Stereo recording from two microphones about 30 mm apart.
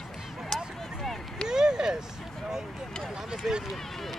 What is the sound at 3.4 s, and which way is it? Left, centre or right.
Run, right.